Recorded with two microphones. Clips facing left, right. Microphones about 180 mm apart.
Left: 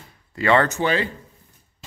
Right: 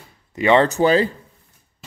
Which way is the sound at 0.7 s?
35° right (ahead or behind).